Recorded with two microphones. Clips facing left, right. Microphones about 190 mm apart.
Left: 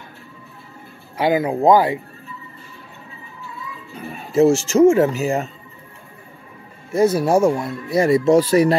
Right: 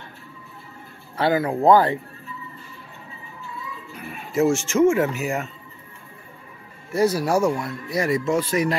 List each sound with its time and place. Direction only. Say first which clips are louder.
1.1 s speech: left 3 dB; 15° left (ahead or behind)
3.9 s speech: left 6 dB; 30° left (ahead or behind)
6.9 s speech: left 4 dB; 25° left (ahead or behind)